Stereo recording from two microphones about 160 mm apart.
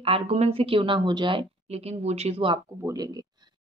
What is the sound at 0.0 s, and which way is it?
Speech, 40° right (ahead or behind).